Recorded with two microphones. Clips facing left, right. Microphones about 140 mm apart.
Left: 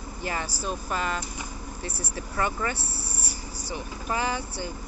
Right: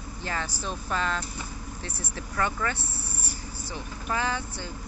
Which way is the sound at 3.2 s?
50° right (ahead or behind).